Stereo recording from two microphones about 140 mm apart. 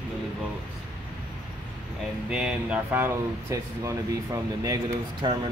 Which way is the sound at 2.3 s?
5° right (ahead or behind).